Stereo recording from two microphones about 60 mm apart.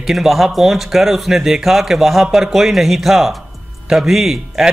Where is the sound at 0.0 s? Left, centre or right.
Centre.